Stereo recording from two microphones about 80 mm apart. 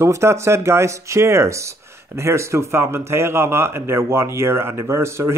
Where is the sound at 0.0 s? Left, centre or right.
Right.